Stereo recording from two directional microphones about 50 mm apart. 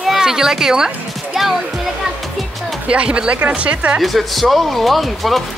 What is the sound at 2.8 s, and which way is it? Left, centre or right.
Speech, right.